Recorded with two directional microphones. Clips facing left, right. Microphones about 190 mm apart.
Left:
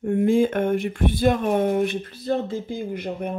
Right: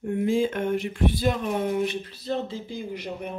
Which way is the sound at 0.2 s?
55° left (ahead or behind).